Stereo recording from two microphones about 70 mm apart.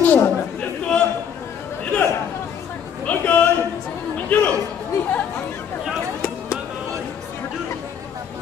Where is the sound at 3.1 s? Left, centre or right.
Left.